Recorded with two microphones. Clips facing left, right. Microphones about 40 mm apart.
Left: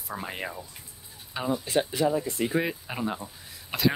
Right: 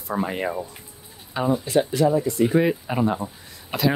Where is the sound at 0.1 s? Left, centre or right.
Centre.